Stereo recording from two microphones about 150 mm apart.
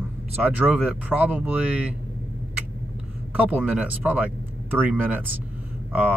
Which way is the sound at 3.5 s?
10° right (ahead or behind).